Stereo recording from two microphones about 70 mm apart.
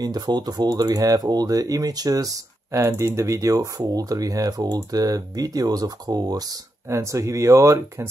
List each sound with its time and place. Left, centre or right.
0.0 s speech: right
6.9 s speech: right